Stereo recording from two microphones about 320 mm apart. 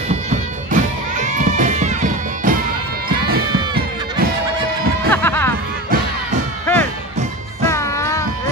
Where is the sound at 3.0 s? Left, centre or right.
Right.